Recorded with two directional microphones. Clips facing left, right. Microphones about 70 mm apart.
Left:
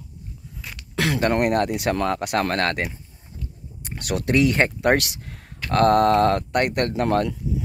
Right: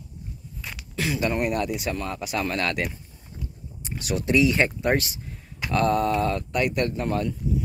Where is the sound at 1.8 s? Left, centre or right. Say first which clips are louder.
Left 7 dB; left.